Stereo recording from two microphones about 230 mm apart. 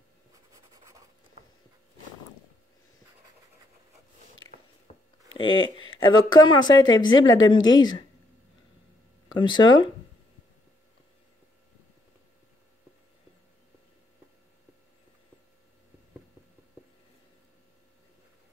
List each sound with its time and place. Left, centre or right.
4.4 s biting: centre
4.9 s a sound: left
5.4 s a woman's voice: left
9.3 s speech: centre